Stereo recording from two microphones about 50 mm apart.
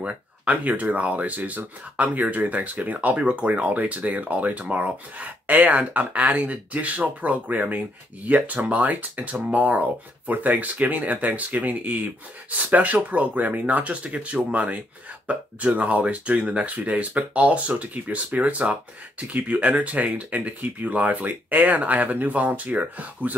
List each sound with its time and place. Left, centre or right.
0.0 s speech: right